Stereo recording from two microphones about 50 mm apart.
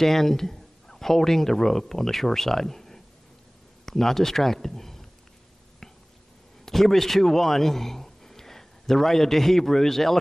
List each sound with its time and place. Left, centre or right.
0.0 s speech: centre
6.6 s a man's voice: centre